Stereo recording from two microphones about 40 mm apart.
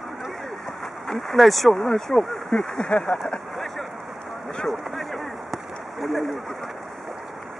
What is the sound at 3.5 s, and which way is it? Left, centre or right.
Vehicle, centre.